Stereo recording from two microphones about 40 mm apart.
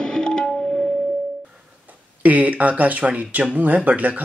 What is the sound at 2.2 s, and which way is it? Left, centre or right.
Speech, right.